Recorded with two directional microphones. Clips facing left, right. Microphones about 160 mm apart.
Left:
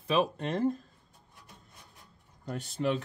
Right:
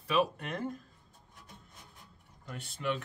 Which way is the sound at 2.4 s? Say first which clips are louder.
Left 5 dB; 40° left (ahead or behind).